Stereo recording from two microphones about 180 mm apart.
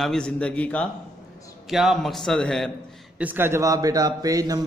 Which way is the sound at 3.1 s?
10° right (ahead or behind).